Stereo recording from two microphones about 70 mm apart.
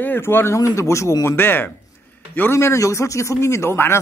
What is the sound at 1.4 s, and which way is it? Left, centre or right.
A man's voice, left.